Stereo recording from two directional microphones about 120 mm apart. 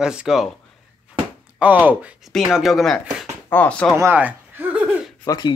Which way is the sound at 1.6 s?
15° right (ahead or behind).